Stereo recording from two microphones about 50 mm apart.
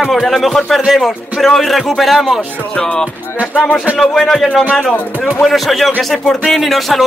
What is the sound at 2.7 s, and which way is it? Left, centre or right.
Speech, centre.